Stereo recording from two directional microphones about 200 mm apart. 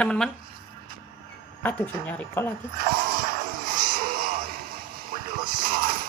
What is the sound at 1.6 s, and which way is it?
Speech, 5° left (ahead or behind).